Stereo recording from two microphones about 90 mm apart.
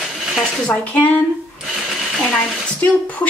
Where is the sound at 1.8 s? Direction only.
5° right (ahead or behind).